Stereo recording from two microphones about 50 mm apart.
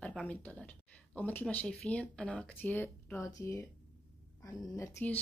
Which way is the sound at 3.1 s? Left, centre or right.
Left.